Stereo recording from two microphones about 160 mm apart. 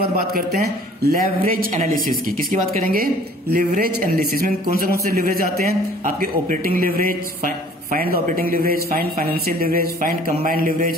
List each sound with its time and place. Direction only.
0.0 s a man's voice: 70° right (ahead or behind)
3.5 s a man's voice: 60° right (ahead or behind)